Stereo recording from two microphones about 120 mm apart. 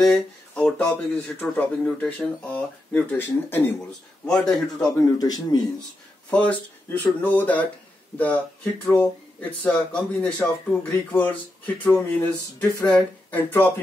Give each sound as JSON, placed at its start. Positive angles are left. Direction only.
{"t": 0.0, "sound": "speech", "side_deg": 5}
{"t": 4.3, "sound": "a man's voice", "side_deg": 5}
{"t": 4.7, "sound": "speech", "side_deg": 30}
{"t": 6.3, "sound": "speech", "side_deg": 15}
{"t": 9.0, "sound": "speech", "side_deg": 10}